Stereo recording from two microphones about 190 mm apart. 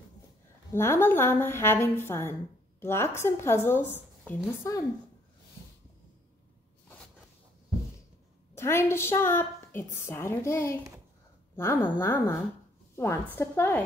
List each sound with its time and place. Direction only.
0.7 s a woman's voice: 10° left (ahead or behind)
8.5 s a woman's voice: 15° left (ahead or behind)